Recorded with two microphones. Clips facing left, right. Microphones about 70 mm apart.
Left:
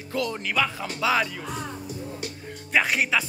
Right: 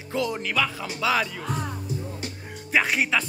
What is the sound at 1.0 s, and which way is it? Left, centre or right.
Speech, centre.